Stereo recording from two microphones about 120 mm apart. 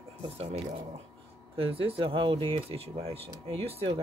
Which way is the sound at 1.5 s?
55° right (ahead or behind).